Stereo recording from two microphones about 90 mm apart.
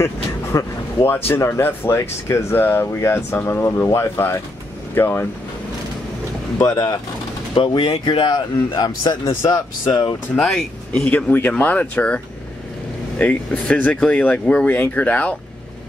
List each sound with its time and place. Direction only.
0.0 s speech: 30° left (ahead or behind)
6.6 s speech: 45° left (ahead or behind)
7.5 s a man's voice: 65° left (ahead or behind); by 9.3 s 50° left (ahead or behind)
9.4 s speech: 35° left (ahead or behind)
10.3 s speech: 5° left (ahead or behind)
11.1 s speech: 20° left (ahead or behind)
13.2 s speech: 15° left (ahead or behind)